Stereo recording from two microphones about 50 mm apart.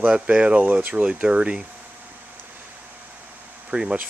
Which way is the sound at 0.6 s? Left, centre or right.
Right.